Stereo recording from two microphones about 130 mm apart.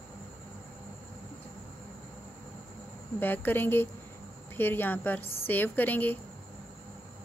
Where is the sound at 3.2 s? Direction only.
15° left (ahead or behind).